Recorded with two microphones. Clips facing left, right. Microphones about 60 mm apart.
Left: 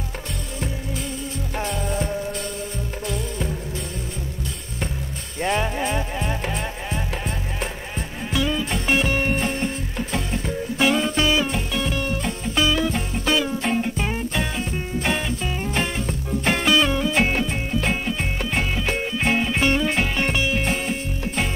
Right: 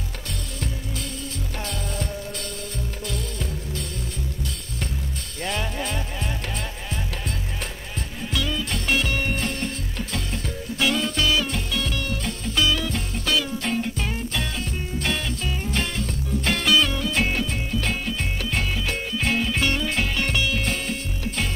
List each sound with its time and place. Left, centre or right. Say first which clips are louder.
1.7 s music: left 6 dB; centre
5.4 s music: left 6 dB; left
8.3 s music: left 4 dB; left